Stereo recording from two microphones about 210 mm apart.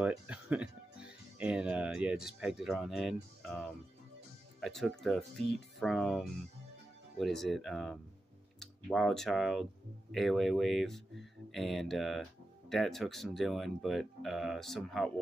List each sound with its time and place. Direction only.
0.0 s music: 5° right (ahead or behind)
4.6 s speech: centre (ahead or behind)